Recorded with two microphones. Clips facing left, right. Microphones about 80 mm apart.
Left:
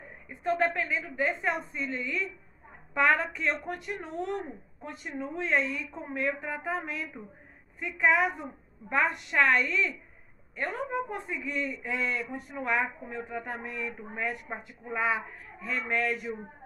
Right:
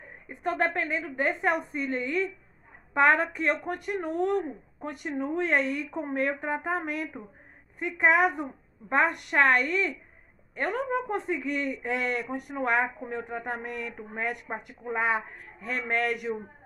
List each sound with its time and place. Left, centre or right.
0.3 s a woman's voice: right
11.2 s speech: right
13.3 s speech: right
15.0 s speech: right